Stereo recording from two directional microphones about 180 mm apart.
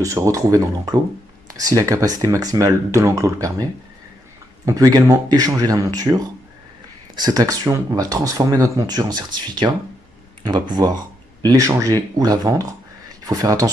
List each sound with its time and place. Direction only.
0.0 s speech: 15° right (ahead or behind)
4.6 s speech: 20° right (ahead or behind)